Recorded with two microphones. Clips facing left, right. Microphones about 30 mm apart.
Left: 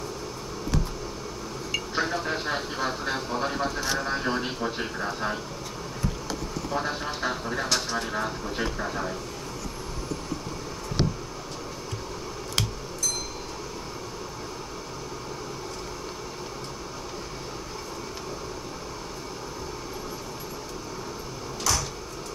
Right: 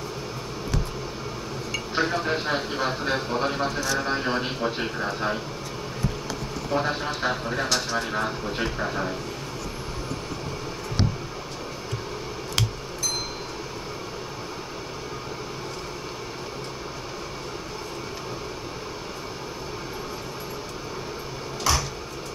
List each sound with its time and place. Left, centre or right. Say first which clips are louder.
2.0 s speech: right 4 dB; centre
6.7 s speech: right 4 dB; centre
8.1 s speech: right 2 dB; centre
21.7 s a sound: right 3 dB; right